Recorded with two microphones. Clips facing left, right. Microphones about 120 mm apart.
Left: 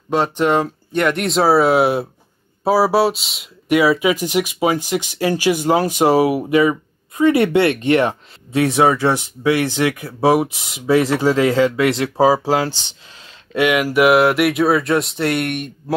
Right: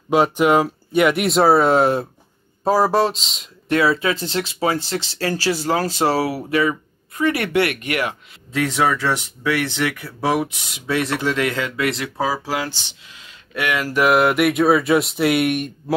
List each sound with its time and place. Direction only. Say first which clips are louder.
0.1 s speech: right 1 dB; 10° right (ahead or behind); by 13.3 s 35° left (ahead or behind)
13.5 s speech: left 6 dB; 20° left (ahead or behind); by 15.7 s centre (ahead or behind)